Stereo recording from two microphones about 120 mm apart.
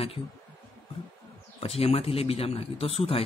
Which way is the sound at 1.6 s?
55° left (ahead or behind).